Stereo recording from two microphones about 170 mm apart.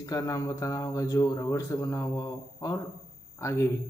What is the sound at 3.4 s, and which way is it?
Speech, 15° left (ahead or behind).